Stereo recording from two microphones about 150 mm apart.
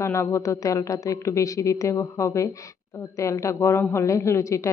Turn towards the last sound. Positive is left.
turn(degrees=20)  # may be behind; listen again after turning